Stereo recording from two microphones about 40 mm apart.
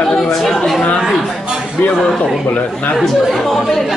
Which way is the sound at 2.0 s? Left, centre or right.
Centre.